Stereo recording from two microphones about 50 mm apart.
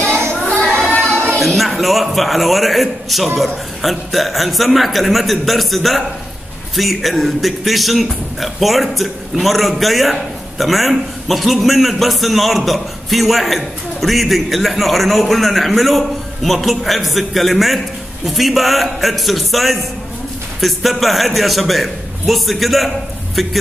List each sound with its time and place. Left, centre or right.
0.0 s child singing: right
0.3 s child singing: left
1.4 s a man's voice: centre